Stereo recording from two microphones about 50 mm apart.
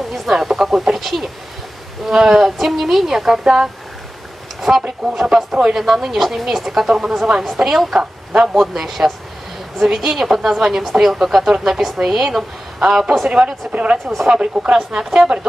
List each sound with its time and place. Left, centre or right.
0.1 s speech: centre; by 14.7 s right
14.7 s speech: centre